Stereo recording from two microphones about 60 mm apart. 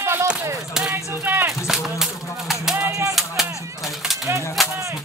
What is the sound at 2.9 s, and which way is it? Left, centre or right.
Music, right.